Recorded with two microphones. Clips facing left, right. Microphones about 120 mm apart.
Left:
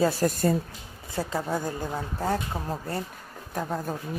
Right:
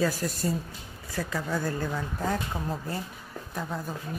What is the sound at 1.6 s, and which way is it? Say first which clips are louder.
Speech: right 1 dB; 15° left (ahead or behind).